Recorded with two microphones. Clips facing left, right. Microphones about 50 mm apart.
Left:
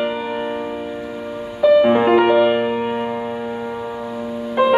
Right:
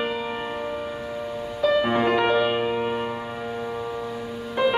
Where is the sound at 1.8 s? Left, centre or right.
Centre.